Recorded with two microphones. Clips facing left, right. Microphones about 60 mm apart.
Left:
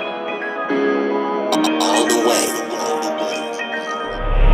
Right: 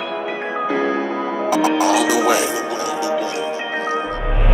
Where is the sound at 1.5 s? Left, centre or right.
Left.